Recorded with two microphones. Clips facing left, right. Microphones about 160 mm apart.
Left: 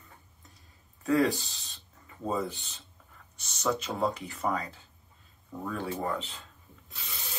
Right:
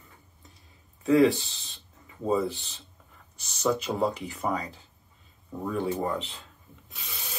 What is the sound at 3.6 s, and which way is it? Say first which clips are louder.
Speech: right 3 dB; centre (ahead or behind).